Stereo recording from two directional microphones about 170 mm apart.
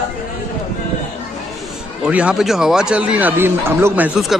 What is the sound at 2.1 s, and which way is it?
Speech, 5° right (ahead or behind).